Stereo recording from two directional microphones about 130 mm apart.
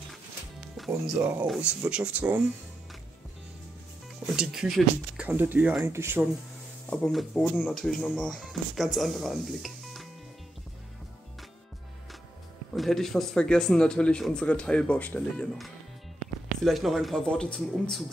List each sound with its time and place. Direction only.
0.7 s speech: centre (ahead or behind)
4.3 s speech: 5° right (ahead or behind)
5.2 s speech: 15° right (ahead or behind)
5.9 s speech: 20° right (ahead or behind)
6.9 s speech: 5° left (ahead or behind)
12.7 s a man's voice: centre (ahead or behind)